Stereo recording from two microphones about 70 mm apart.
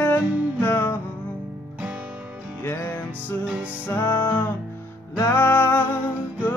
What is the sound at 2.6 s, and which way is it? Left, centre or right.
Music, left.